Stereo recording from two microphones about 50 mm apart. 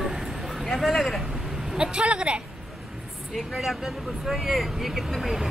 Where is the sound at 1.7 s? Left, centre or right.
Centre.